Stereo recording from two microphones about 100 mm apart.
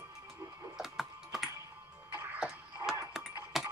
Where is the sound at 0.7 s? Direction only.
5° right (ahead or behind).